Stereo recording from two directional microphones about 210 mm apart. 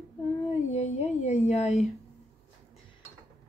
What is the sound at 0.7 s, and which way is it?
Speech, 30° left (ahead or behind).